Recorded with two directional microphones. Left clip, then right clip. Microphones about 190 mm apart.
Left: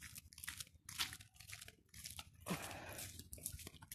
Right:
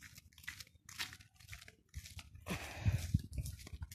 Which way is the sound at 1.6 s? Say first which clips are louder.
Left 1 dB; 20° right (ahead or behind).